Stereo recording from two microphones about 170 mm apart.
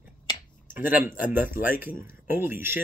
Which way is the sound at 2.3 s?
10° right (ahead or behind).